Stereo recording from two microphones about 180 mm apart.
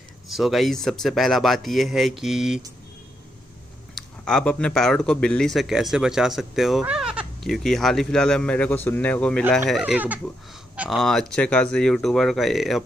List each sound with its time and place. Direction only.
0.3 s speech: centre (ahead or behind)
3.9 s speech: 5° left (ahead or behind)